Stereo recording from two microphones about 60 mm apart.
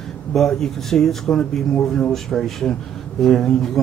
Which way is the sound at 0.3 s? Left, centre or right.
Centre.